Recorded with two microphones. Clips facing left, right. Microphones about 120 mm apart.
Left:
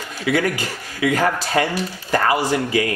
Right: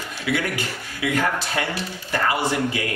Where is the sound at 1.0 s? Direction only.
40° left (ahead or behind).